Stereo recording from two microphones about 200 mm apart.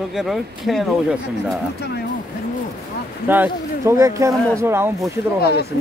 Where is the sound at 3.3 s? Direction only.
10° right (ahead or behind).